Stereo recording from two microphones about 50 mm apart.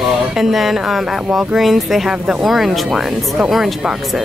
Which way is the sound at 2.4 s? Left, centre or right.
Centre.